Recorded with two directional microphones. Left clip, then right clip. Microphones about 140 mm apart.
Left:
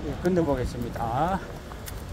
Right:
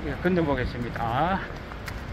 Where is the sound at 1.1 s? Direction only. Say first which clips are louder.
Right 1 dB; 15° left (ahead or behind).